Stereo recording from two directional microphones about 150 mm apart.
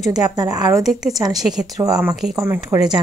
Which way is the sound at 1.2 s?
25° right (ahead or behind).